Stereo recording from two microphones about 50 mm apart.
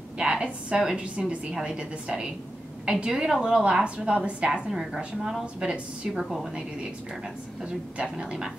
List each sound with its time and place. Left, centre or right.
0.2 s a woman's voice: centre
3.6 s a woman's voice: right
8.0 s a woman's voice: centre